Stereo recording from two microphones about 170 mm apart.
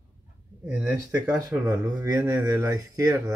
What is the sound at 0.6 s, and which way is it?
Speech, 5° right (ahead or behind).